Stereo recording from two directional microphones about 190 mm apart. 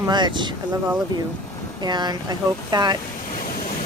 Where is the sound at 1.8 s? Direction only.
20° right (ahead or behind).